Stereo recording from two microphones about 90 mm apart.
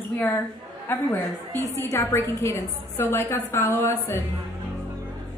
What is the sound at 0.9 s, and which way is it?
A woman's voice, 25° left (ahead or behind).